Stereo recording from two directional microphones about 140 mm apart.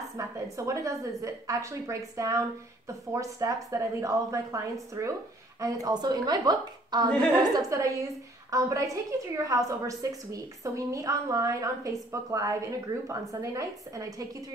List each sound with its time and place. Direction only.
0.2 s a woman's voice: 20° right (ahead or behind)